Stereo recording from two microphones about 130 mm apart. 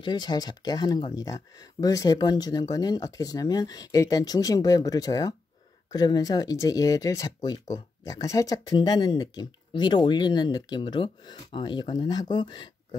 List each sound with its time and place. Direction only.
0.0 s speech: 35° left (ahead or behind)